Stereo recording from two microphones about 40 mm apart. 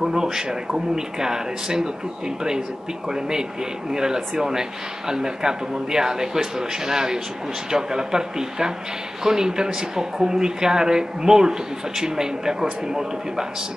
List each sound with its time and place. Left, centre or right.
0.0 s a woman's voice: centre